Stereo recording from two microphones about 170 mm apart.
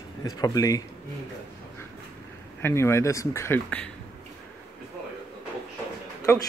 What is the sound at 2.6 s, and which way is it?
Speech, 15° left (ahead or behind).